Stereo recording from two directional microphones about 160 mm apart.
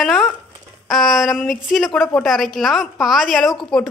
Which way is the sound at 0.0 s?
5° left (ahead or behind).